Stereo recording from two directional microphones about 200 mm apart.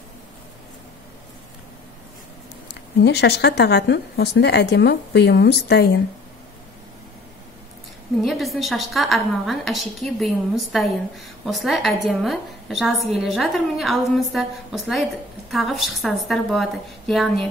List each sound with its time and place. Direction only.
2.7 s a woman's voice: 55° left (ahead or behind)
8.2 s a woman's voice: centre (ahead or behind)